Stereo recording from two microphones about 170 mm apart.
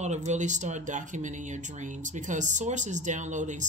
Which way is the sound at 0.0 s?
45° right (ahead or behind).